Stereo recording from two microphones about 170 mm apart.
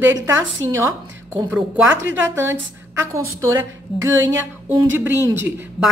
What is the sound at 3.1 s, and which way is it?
Speech, 15° right (ahead or behind).